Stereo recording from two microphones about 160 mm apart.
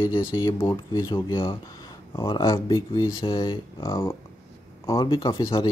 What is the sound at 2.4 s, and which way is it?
Speech, 20° left (ahead or behind).